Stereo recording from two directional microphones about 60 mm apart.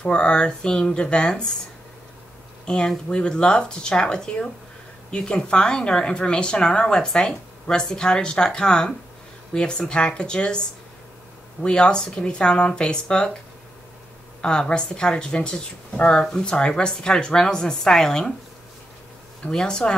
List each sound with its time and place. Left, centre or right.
0.0 s speech: centre
2.6 s speech: centre
11.6 s speech: centre
14.4 s speech: centre
19.4 s speech: centre